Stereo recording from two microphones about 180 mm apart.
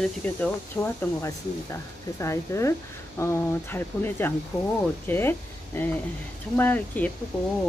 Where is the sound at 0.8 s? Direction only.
15° left (ahead or behind).